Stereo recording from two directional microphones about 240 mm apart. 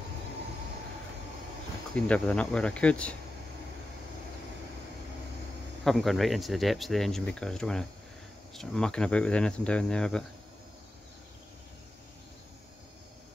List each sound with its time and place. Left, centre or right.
2.0 s speech: centre
5.9 s speech: centre